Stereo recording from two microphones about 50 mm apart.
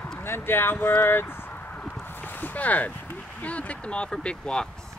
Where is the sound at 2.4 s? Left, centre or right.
Left.